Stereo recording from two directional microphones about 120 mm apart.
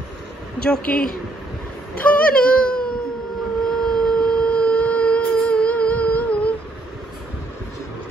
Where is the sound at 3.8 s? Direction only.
5° left (ahead or behind).